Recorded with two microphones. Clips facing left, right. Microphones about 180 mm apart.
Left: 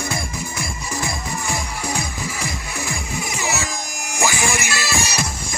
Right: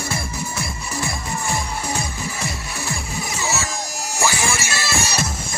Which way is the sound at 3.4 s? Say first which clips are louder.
Even; 15° left (ahead or behind).